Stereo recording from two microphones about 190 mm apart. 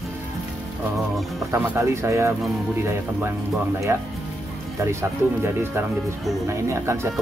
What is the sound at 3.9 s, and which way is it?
Speech, 15° right (ahead or behind).